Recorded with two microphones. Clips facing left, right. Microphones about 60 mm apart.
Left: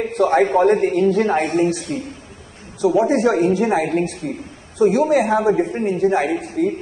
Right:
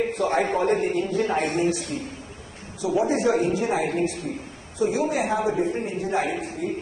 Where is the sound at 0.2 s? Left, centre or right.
Left.